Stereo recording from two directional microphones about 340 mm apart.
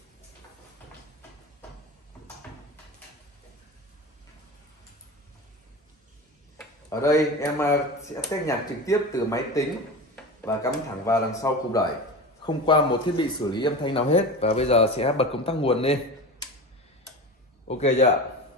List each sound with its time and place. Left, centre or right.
6.9 s speech: centre
17.6 s speech: centre